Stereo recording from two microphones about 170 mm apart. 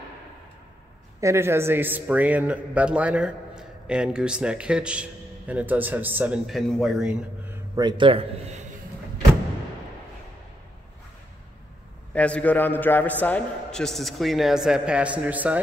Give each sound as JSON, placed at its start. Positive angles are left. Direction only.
{"t": 1.2, "sound": "speech", "side_deg": -15}
{"t": 7.7, "sound": "a man's voice", "side_deg": -25}
{"t": 12.1, "sound": "a man's voice", "side_deg": 5}